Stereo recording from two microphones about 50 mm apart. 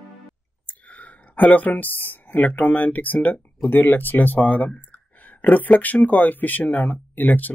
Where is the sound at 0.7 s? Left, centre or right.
Left.